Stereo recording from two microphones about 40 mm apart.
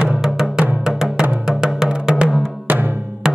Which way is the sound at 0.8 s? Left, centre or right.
Centre.